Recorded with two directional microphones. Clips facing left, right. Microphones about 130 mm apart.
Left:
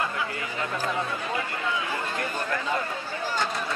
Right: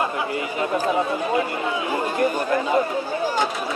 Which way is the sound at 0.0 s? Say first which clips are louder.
Right 6 dB; 20° right (ahead or behind).